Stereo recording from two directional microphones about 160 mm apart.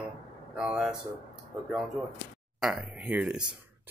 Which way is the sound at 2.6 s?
5° right (ahead or behind).